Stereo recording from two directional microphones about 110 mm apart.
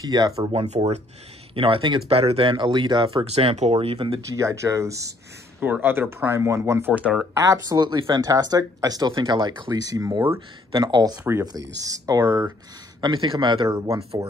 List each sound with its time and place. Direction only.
0.0 s speech: 35° right (ahead or behind)
0.5 s speech: 65° right (ahead or behind)
1.5 s speech: 55° right (ahead or behind)
3.3 s speech: 75° right (ahead or behind)
3.7 s speech: 55° right (ahead or behind)
4.2 s speech: 30° right (ahead or behind)
5.6 s speech: 20° right (ahead or behind)
6.9 s speech: 10° right (ahead or behind)
7.3 s speech: 30° right (ahead or behind)
10.8 s speech: 40° right (ahead or behind)
13.0 s speech: 45° right (ahead or behind)
13.7 s speech: 25° right (ahead or behind)